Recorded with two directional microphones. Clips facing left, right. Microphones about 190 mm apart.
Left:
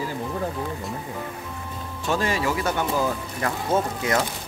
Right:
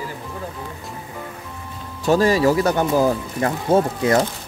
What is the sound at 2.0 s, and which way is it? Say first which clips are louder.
Speech: right 9 dB; 40° right (ahead or behind).